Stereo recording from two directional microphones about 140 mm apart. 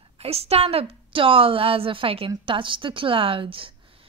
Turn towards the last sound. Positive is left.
turn(degrees=-40)  # may be behind; listen again after turning